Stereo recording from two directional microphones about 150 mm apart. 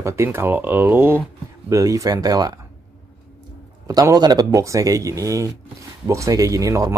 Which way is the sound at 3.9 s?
25° right (ahead or behind).